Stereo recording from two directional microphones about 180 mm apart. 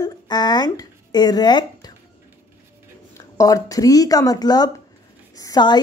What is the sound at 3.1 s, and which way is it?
Speech, 20° left (ahead or behind).